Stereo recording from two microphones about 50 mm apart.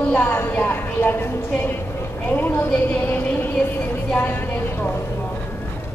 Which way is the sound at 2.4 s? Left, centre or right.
Left.